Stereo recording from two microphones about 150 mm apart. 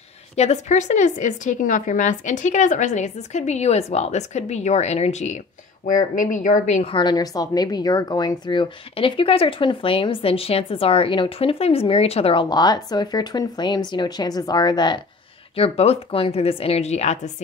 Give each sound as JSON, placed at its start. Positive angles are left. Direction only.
{"t": 0.4, "sound": "speech", "side_deg": 50}
{"t": 6.9, "sound": "speech", "side_deg": 30}
{"t": 15.5, "sound": "speech", "side_deg": 40}